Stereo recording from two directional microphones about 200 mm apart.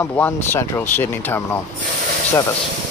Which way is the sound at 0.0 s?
10° left (ahead or behind).